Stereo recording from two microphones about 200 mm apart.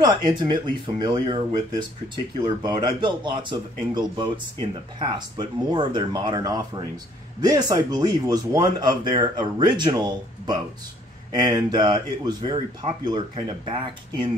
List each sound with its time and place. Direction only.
0.0 s speech: 20° right (ahead or behind)